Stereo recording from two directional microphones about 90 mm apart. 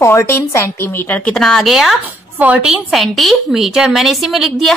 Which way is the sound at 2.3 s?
15° right (ahead or behind).